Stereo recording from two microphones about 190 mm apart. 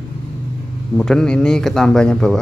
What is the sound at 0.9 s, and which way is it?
A man's voice, 5° left (ahead or behind).